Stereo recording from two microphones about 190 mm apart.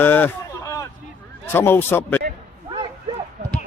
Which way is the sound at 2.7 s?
30° right (ahead or behind).